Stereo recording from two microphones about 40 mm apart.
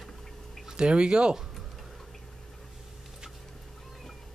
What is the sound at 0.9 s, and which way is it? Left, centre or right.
Speech, right.